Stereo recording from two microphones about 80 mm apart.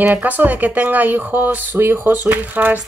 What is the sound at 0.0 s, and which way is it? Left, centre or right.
Speech, right.